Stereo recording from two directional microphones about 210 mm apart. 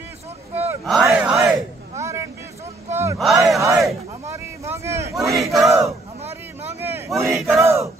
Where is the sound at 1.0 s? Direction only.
5° right (ahead or behind).